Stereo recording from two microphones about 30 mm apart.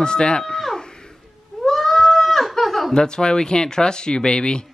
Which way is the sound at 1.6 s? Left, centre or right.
Centre.